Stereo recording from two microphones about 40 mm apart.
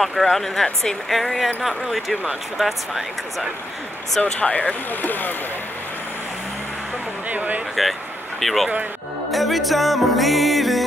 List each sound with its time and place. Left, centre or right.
0.0 s speech: centre
1.0 s music: centre
4.2 s speech: left
5.0 s speech: left
7.2 s speech: right
8.4 s speech: centre
9.3 s music: centre